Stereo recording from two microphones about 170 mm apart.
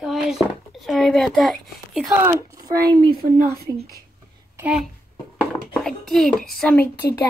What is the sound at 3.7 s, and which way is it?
Speech, 20° right (ahead or behind).